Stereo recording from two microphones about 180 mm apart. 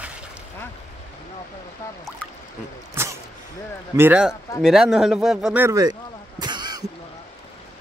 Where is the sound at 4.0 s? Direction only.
10° right (ahead or behind).